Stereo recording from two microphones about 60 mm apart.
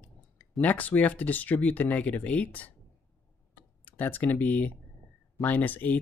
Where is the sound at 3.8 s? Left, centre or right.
Left.